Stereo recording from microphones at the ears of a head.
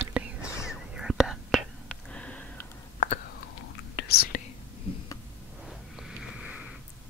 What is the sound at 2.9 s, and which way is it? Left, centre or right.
Whispering, left.